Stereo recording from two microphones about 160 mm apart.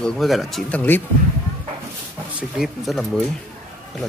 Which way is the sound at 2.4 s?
Centre (ahead or behind).